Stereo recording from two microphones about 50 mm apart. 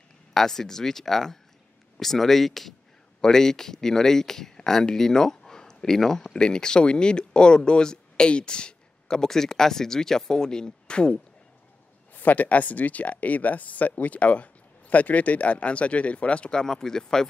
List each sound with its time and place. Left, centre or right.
0.3 s speech: centre
12.1 s speech: left; by 17.3 s centre